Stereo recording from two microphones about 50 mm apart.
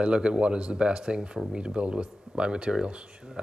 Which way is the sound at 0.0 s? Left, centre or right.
Centre.